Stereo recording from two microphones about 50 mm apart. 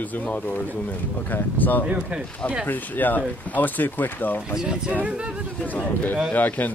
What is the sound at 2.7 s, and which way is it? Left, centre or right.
Speech, left.